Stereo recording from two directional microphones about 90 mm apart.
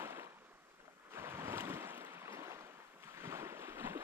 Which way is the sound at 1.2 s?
30° right (ahead or behind).